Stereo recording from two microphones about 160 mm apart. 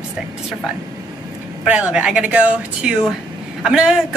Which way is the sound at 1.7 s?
10° right (ahead or behind).